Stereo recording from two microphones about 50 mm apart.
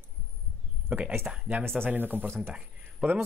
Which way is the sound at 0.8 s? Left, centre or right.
Right.